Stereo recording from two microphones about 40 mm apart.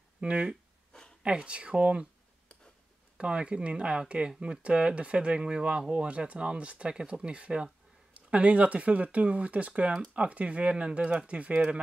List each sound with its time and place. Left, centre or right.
0.2 s speech: right
3.2 s speech: right